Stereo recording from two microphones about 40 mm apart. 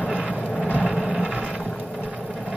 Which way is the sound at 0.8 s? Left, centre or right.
Centre.